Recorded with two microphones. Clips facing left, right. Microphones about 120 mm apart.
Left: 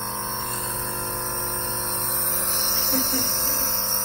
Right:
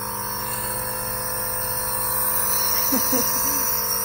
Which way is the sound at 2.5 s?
45° right (ahead or behind).